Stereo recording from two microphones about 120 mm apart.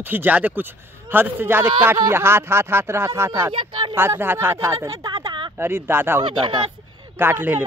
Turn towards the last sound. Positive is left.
turn(degrees=-15)  # may be behind; listen again after turning